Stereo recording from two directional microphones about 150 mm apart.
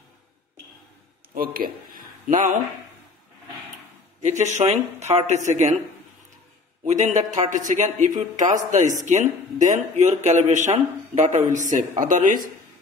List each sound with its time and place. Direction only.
1.3 s a man's voice: 75° right (ahead or behind); by 2.6 s 55° right (ahead or behind)
4.2 s speech: 50° right (ahead or behind)
6.9 s a man's voice: 50° right (ahead or behind)